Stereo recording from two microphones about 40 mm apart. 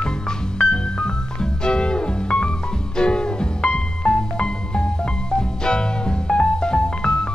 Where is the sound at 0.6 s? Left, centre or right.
Left.